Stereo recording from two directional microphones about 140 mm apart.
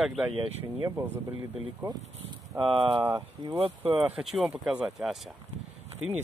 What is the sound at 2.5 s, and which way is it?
Speech, 40° right (ahead or behind).